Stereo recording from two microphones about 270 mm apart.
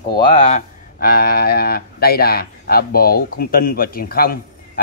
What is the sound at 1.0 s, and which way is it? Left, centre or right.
Speech, left.